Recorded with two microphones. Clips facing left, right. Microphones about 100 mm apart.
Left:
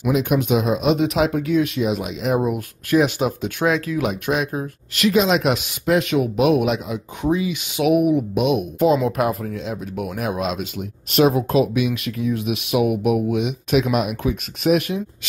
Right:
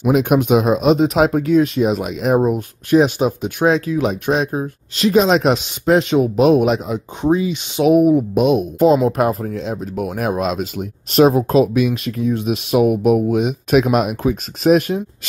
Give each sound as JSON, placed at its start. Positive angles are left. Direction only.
{"t": 0.1, "sound": "speech", "side_deg": -50}
{"t": 2.9, "sound": "speech", "side_deg": -20}